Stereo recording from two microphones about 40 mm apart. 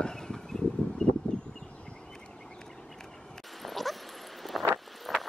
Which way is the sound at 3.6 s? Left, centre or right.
Centre.